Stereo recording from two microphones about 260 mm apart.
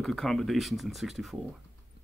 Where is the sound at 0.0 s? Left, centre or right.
Centre.